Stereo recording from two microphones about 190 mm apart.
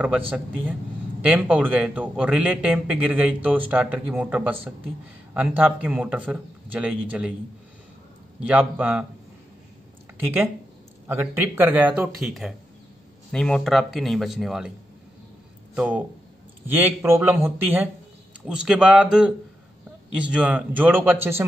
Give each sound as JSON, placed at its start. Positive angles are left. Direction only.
{"t": 1.2, "sound": "a man's voice", "side_deg": -5}
{"t": 8.5, "sound": "a man's voice", "side_deg": -10}
{"t": 11.1, "sound": "a man's voice", "side_deg": -10}
{"t": 15.7, "sound": "a man's voice", "side_deg": -5}